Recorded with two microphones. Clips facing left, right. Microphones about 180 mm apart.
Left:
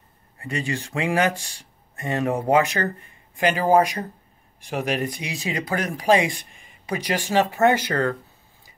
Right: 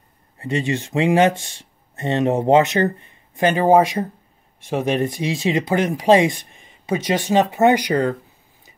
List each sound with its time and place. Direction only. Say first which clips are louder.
0.4 s speech: right 6 dB; 25° right (ahead or behind)